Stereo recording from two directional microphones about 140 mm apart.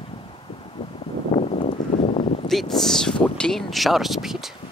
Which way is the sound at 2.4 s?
Centre (ahead or behind).